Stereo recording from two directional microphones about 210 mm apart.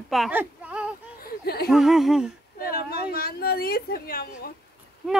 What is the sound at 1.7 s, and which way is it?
Speech, centre (ahead or behind).